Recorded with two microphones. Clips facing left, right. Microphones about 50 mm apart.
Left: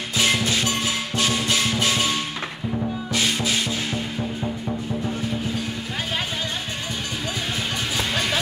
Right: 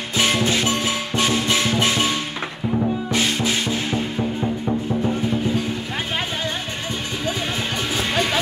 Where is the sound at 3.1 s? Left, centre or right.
Right.